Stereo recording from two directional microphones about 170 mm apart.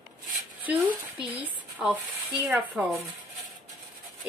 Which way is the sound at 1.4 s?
10° right (ahead or behind).